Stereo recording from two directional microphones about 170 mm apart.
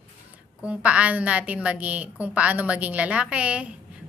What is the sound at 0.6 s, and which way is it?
A woman's voice, 5° right (ahead or behind).